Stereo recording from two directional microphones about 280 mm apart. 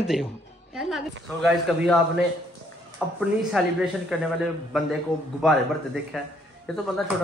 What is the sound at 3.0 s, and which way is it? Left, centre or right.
Speech, centre.